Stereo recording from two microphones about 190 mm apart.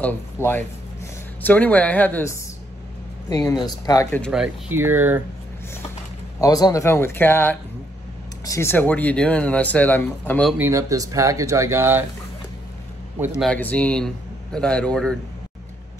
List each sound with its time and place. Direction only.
0.0 s speech: 10° left (ahead or behind)
3.3 s speech: 20° left (ahead or behind)
4.2 s speech: 5° right (ahead or behind)
6.4 s speech: 20° left (ahead or behind)
10.6 s speech: 15° right (ahead or behind)
13.4 s speech: 5° left (ahead or behind)